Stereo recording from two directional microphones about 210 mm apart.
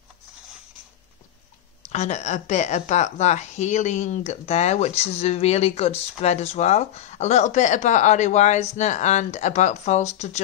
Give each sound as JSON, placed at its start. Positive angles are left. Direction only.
{"t": 1.9, "sound": "a woman's voice", "side_deg": 30}